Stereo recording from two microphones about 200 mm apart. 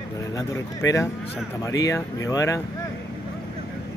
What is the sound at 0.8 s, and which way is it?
Speech, 15° left (ahead or behind).